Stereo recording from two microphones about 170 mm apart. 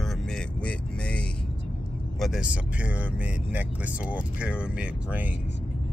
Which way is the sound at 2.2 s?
5° right (ahead or behind).